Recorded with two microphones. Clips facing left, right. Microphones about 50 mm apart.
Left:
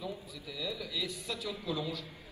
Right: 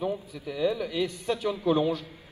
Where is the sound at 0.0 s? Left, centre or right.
Right.